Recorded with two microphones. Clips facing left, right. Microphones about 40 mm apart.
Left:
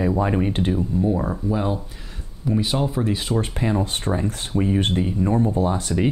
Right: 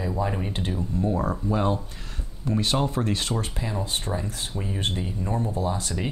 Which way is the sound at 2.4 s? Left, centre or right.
Centre.